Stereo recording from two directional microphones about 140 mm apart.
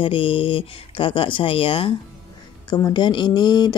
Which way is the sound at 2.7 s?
30° left (ahead or behind).